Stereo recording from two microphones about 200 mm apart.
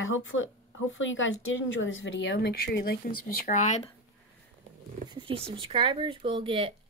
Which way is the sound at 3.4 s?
40° left (ahead or behind).